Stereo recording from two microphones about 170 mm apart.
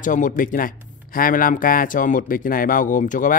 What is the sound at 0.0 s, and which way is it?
Speech, 50° left (ahead or behind).